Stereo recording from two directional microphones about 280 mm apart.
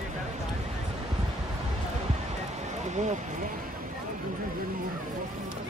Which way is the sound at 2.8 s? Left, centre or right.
Right.